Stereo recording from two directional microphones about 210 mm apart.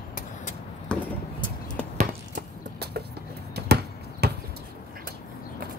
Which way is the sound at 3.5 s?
50° right (ahead or behind).